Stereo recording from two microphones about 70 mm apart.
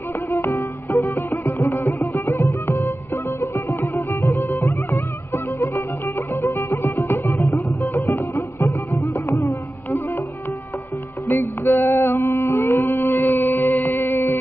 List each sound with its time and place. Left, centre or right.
0.4 s music: left
11.2 s music: left